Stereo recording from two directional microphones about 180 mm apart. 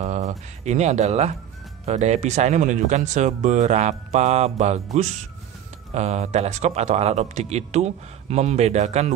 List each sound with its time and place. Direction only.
0.0 s speech: 40° right (ahead or behind)